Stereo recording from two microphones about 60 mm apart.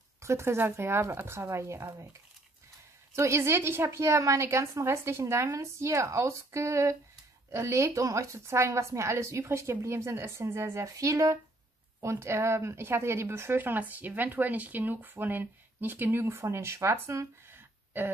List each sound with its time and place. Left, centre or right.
0.2 s speech: right
3.2 s speech: right
12.0 s speech: right
17.5 s a sound: right